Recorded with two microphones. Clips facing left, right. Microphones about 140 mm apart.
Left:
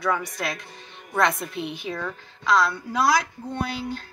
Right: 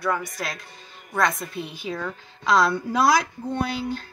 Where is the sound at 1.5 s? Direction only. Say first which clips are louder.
Left 2 dB; 65° left (ahead or behind).